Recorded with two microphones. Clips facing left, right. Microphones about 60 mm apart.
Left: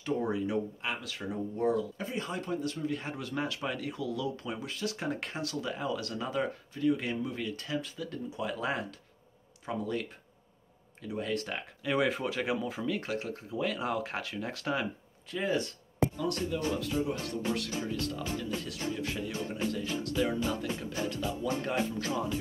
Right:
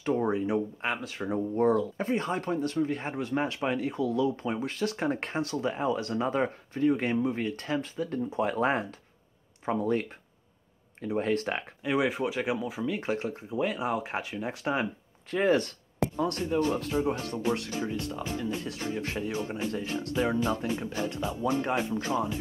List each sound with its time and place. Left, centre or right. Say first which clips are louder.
0.0 s speech: right 4 dB; right
11.8 s speech: right 2 dB; centre
15.3 s speech: right 6 dB; right
16.2 s speech: right 5 dB; right